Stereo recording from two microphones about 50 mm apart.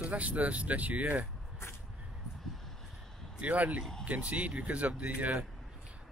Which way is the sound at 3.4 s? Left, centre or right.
Right.